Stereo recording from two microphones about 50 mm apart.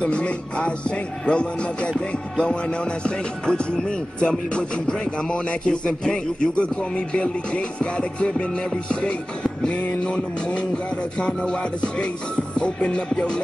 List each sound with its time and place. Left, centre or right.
0.0 s speech: left